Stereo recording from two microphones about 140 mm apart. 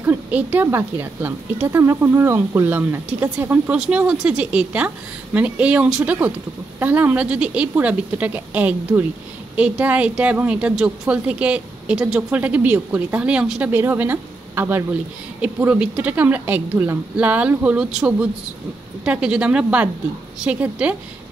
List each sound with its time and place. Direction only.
0.0 s a woman's voice: 10° right (ahead or behind)